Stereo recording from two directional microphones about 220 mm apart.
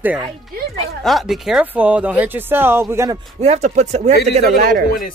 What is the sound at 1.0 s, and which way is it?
Speech, centre (ahead or behind).